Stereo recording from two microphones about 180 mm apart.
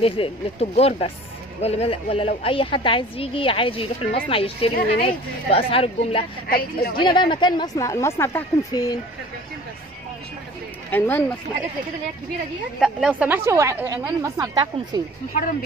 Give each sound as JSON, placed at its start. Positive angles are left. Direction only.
{"t": 0.0, "sound": "a woman's voice", "side_deg": 35}
{"t": 6.4, "sound": "a woman's voice", "side_deg": 55}
{"t": 7.0, "sound": "speech", "side_deg": 25}
{"t": 10.9, "sound": "speech", "side_deg": 10}
{"t": 12.8, "sound": "a woman's voice", "side_deg": -5}